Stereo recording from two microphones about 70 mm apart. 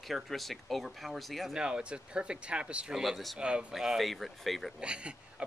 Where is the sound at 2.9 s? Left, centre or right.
Centre.